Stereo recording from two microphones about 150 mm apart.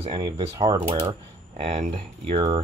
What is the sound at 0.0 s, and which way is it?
Speech, 30° right (ahead or behind).